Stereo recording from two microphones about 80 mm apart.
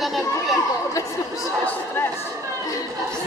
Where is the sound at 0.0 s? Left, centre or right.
Centre.